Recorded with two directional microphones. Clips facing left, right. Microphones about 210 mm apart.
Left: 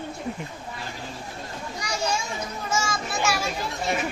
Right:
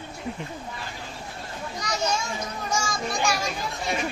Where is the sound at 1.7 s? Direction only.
10° left (ahead or behind).